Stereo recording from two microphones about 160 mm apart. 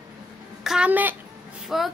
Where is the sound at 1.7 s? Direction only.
Centre (ahead or behind).